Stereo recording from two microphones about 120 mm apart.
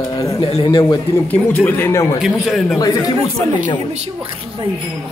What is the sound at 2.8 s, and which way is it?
Speech, 30° left (ahead or behind).